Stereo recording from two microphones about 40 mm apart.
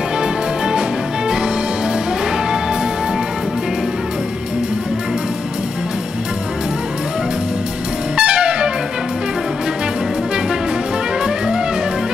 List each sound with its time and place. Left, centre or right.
8.2 s trumpet: centre
11.2 s music: centre